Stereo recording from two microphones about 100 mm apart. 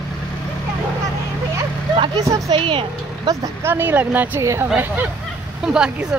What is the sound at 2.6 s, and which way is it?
Speech, 55° right (ahead or behind).